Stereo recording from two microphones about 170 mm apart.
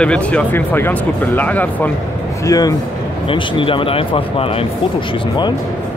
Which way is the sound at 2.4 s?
20° left (ahead or behind).